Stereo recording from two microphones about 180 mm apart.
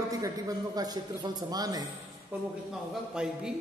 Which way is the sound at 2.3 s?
10° right (ahead or behind).